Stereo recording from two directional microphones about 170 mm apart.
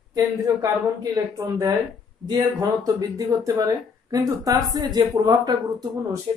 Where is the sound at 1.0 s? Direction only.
20° right (ahead or behind).